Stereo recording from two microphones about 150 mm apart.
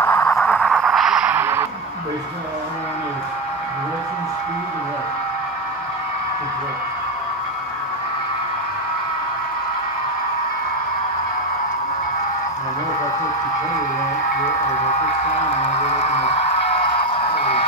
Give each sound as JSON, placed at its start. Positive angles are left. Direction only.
{"t": 0.0, "sound": "music", "side_deg": 10}
{"t": 15.6, "sound": "music", "side_deg": 45}